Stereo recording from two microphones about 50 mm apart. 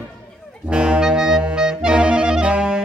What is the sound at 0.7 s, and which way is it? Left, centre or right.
Clarinet, centre.